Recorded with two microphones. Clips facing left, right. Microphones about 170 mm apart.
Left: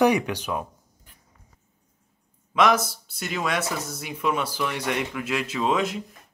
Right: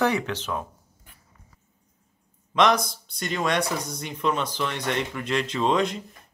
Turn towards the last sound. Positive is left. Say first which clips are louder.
# right 1 dB
turn(degrees=5)  # may be behind; listen again after turning